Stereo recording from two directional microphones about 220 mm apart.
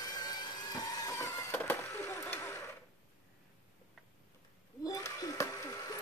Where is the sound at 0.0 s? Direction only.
20° left (ahead or behind).